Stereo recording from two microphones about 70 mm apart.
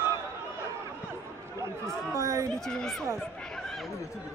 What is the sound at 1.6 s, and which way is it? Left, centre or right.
Chatter, right.